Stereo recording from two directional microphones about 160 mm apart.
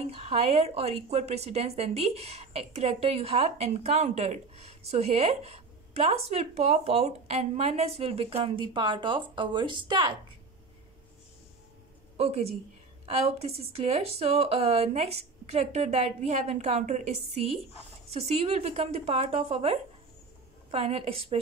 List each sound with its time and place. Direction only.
0.0 s a woman's voice: 40° right (ahead or behind)
12.2 s a woman's voice: 40° right (ahead or behind)